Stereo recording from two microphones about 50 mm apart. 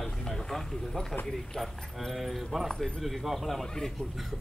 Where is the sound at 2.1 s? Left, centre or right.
Centre.